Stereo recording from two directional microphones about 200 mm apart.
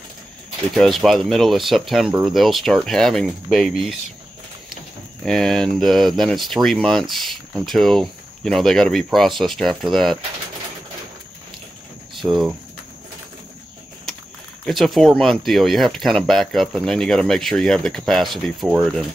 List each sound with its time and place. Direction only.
0.7 s speech: centre (ahead or behind)
5.2 s speech: centre (ahead or behind)
12.2 s speech: centre (ahead or behind)
14.7 s speech: centre (ahead or behind)